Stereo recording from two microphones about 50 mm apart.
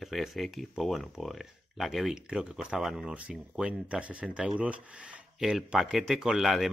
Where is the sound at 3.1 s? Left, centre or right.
Right.